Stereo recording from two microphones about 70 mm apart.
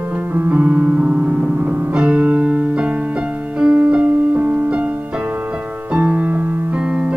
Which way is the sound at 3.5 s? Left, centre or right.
Centre.